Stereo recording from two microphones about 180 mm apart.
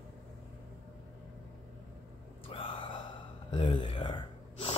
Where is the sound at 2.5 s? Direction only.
30° left (ahead or behind).